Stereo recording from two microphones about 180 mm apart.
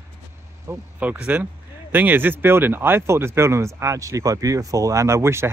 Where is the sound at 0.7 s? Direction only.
10° right (ahead or behind).